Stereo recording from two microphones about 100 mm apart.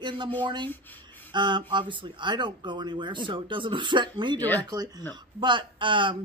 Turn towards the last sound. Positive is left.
turn(degrees=-55)  # may be behind; listen again after turning